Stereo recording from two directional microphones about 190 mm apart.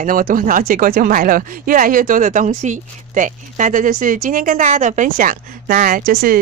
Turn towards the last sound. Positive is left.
turn(degrees=-50)  # may be behind; listen again after turning